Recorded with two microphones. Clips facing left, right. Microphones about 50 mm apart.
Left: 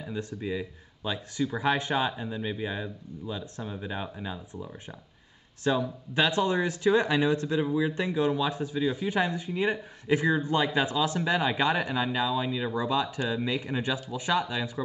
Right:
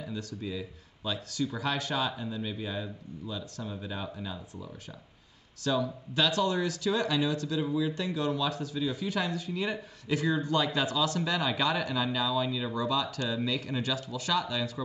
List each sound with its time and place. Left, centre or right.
0.0 s speech: left